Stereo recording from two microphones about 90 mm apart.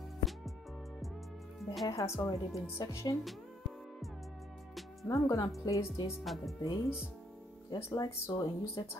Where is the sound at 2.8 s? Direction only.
40° left (ahead or behind).